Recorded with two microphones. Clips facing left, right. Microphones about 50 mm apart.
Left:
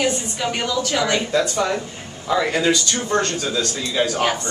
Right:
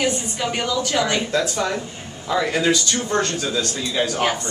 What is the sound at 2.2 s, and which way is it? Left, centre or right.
A man's voice, centre.